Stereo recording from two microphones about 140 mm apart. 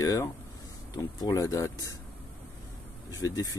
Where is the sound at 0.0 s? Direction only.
25° left (ahead or behind).